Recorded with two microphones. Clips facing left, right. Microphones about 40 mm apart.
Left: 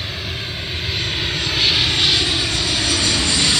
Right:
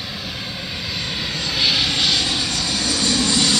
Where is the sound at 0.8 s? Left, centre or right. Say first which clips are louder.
Left 4 dB; left.